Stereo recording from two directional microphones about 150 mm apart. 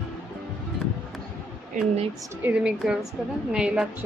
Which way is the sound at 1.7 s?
60° right (ahead or behind).